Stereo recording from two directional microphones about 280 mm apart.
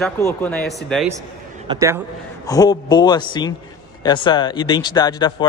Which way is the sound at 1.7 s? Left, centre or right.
Centre.